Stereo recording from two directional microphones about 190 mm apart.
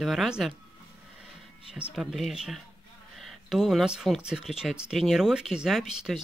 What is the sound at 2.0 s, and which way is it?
Speech, centre (ahead or behind).